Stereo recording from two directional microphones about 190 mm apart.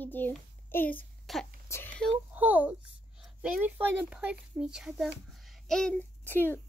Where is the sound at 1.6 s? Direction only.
15° left (ahead or behind).